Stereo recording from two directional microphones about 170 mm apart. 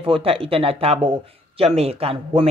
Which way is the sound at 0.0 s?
35° right (ahead or behind).